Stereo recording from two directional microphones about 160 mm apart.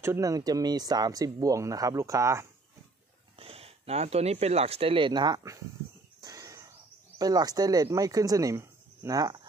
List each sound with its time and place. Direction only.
0.0 s speech: 20° right (ahead or behind)
3.3 s speech: 35° right (ahead or behind)
6.2 s a sound: 20° right (ahead or behind)
7.2 s speech: 25° right (ahead or behind)